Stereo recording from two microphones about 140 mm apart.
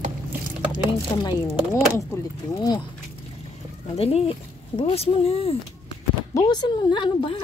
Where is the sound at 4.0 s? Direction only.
45° left (ahead or behind).